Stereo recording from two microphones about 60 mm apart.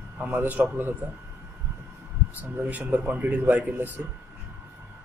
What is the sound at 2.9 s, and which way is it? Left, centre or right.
A man's voice, right.